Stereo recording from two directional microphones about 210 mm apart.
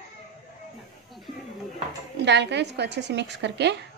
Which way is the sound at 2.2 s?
55° right (ahead or behind).